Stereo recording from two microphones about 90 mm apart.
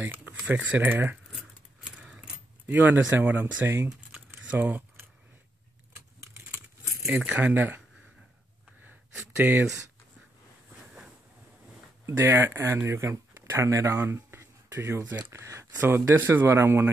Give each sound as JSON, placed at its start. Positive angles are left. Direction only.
{"t": 0.1, "sound": "speech", "side_deg": -20}
{"t": 1.9, "sound": "keys jangling", "side_deg": -10}
{"t": 7.1, "sound": "speech", "side_deg": -15}
{"t": 9.4, "sound": "speech", "side_deg": -25}
{"t": 12.1, "sound": "speech", "side_deg": -25}
{"t": 13.9, "sound": "a sound", "side_deg": -25}
{"t": 15.3, "sound": "speech", "side_deg": -30}